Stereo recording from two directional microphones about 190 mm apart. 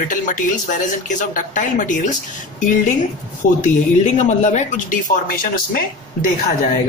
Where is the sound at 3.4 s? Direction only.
45° left (ahead or behind).